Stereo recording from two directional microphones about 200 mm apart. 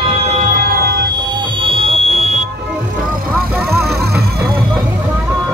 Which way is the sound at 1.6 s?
25° right (ahead or behind).